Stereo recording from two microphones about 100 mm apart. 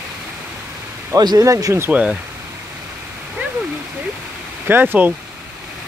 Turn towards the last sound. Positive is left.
turn(degrees=-20)  # may be behind; listen again after turning